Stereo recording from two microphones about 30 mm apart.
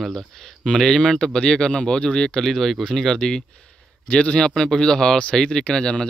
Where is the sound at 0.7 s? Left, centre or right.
Left.